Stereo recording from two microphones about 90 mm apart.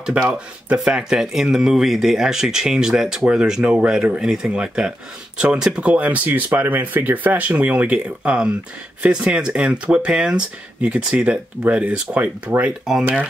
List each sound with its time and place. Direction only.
0.0 s speech: 10° right (ahead or behind)